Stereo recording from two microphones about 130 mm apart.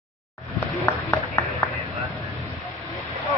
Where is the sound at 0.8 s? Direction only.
15° left (ahead or behind).